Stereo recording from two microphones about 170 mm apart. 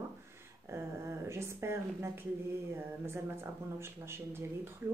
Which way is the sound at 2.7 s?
15° right (ahead or behind).